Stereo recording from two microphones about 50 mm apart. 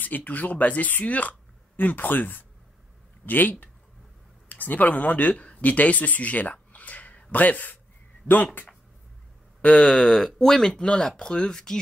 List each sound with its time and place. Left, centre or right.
0.0 s speech: left
9.6 s a sound: left
10.0 s speech: centre